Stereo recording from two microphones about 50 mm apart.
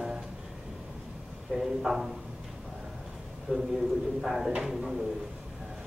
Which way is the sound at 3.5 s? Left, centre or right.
Right.